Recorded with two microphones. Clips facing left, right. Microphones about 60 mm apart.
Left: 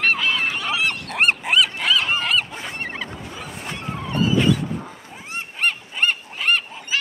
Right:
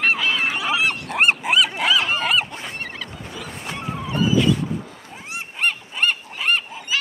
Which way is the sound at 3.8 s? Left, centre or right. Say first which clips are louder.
Right 1 dB; centre.